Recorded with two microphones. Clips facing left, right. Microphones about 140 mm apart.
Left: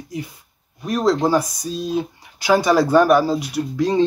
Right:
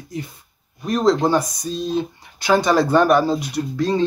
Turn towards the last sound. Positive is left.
turn(degrees=15)  # may be behind; listen again after turning